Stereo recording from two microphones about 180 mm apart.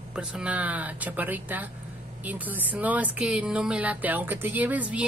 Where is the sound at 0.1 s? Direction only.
5° right (ahead or behind).